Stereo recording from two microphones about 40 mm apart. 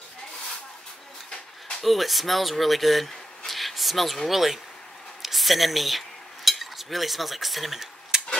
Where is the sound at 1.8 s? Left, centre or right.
Centre.